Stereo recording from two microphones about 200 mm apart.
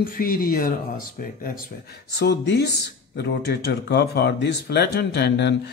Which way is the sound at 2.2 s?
55° left (ahead or behind).